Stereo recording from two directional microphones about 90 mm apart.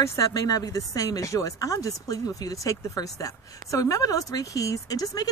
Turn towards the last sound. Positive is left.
turn(degrees=40)  # may be behind; listen again after turning